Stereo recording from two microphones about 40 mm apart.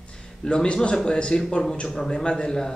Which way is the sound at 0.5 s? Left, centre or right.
Left.